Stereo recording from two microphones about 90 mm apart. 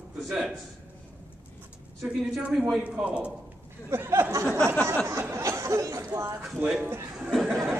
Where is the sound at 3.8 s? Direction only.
25° right (ahead or behind).